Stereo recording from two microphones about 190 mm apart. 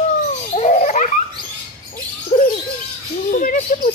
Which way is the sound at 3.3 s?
45° left (ahead or behind).